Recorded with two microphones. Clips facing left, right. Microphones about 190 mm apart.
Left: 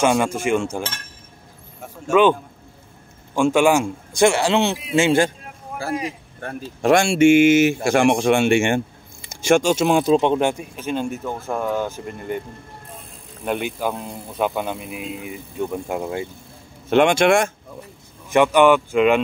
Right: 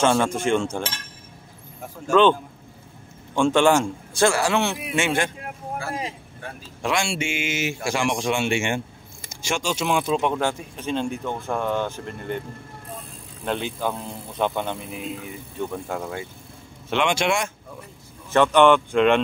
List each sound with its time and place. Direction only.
0.0 s speech: 10° left (ahead or behind)
3.3 s speech: 10° left (ahead or behind); by 5.3 s 30° left (ahead or behind)
6.4 s speech: 50° left (ahead or behind)
10.3 s speech: 15° left (ahead or behind)
10.8 s speech: 5° left (ahead or behind)
13.5 s speech: 10° left (ahead or behind)
16.9 s speech: 50° left (ahead or behind)
18.3 s speech: 10° left (ahead or behind)